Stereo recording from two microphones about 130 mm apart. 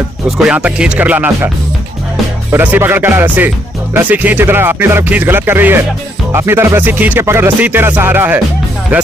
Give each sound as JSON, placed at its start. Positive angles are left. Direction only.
{"t": 0.4, "sound": "speech", "side_deg": -10}
{"t": 2.5, "sound": "speech", "side_deg": -15}